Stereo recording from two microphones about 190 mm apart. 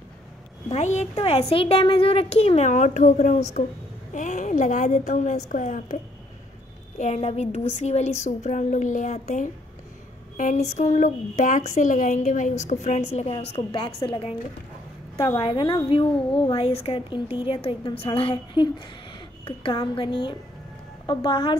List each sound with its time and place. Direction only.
0.7 s a woman's voice: 35° left (ahead or behind)
7.0 s a woman's voice: 35° left (ahead or behind)